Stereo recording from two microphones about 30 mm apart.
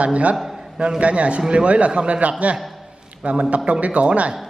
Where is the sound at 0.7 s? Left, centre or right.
Right.